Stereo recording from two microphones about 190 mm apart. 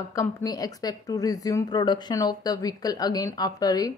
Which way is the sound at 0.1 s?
15° left (ahead or behind).